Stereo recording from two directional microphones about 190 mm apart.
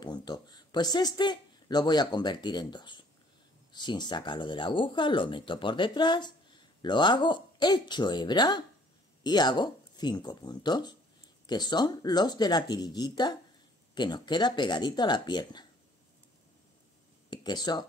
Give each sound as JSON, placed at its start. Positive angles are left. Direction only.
{"t": 0.0, "sound": "speech", "side_deg": 20}
{"t": 17.3, "sound": "speech", "side_deg": 20}